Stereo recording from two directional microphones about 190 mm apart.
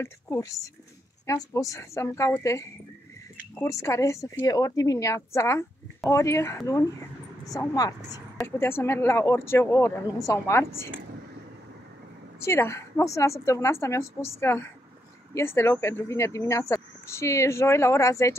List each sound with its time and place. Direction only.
0.0 s speech: 20° left (ahead or behind)
12.4 s speech: 15° left (ahead or behind)